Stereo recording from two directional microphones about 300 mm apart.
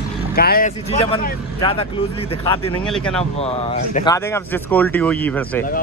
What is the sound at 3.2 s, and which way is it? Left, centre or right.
Speech, centre.